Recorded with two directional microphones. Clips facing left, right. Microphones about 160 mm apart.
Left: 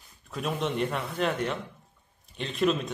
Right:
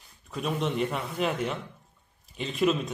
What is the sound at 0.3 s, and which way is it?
Speech, centre (ahead or behind).